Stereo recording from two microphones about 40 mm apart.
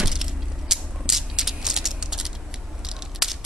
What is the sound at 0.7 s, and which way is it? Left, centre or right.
Mechanisms, centre.